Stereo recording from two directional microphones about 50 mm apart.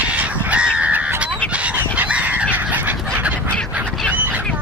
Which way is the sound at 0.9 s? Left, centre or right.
Right.